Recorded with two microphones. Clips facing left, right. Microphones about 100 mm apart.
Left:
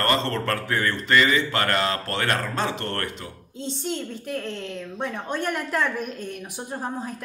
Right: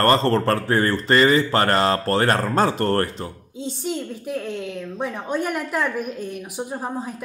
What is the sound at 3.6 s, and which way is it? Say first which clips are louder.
A woman's voice: right 2 dB; 5° right (ahead or behind).